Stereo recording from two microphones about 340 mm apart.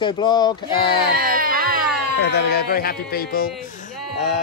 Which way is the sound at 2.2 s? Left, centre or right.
Left.